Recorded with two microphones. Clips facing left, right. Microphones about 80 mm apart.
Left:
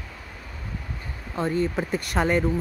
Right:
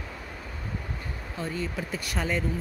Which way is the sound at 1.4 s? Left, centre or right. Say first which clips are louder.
Left 8 dB; left.